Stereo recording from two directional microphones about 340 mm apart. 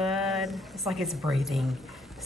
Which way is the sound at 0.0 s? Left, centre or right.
Centre.